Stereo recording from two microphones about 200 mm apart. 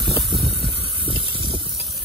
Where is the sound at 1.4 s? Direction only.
25° right (ahead or behind).